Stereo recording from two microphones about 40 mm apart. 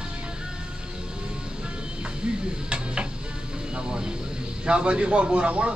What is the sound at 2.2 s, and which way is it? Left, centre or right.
Speech, right.